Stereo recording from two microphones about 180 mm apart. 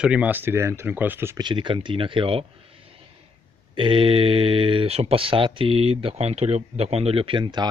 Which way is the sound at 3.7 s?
30° right (ahead or behind).